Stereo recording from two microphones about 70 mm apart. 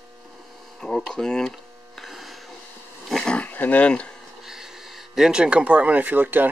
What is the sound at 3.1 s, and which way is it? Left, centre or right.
Roaring cats, centre.